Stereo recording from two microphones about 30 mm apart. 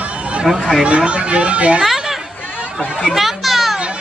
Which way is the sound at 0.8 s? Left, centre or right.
Right.